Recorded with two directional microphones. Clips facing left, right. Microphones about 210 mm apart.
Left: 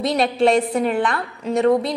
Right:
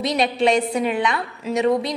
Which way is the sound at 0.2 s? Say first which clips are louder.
Left 2 dB; centre (ahead or behind).